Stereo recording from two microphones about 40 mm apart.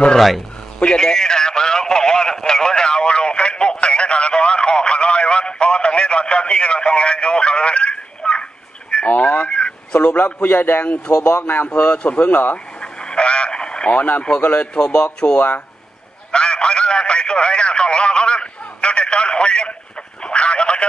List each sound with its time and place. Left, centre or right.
0.7 s a sound: left
9.1 s speech: left
9.5 s radio: left
10.1 s a man's voice: left
11.7 s speech: left
12.2 s speech: left
12.8 s a sound: left
13.9 s speech: left
14.6 s speech: left
15.3 s speech: left
16.3 s a sound: left
20.2 s radio: left